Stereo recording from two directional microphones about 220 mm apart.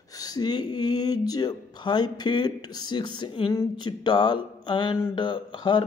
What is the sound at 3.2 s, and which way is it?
Mantra, 20° left (ahead or behind).